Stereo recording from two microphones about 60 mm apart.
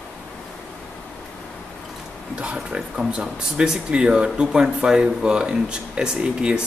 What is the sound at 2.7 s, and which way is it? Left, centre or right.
Speech, centre.